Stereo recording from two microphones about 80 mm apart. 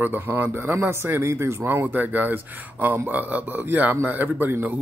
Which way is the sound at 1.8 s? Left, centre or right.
Right.